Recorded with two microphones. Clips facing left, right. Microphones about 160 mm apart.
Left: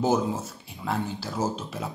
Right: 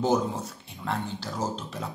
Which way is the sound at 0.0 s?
5° left (ahead or behind).